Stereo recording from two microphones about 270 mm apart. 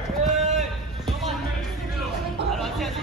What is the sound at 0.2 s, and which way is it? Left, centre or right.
Run, right.